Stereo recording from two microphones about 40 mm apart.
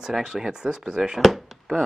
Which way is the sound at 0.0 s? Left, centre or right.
Centre.